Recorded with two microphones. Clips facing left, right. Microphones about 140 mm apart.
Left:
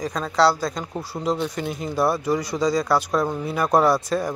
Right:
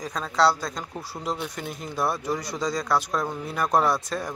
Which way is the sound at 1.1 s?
20° left (ahead or behind).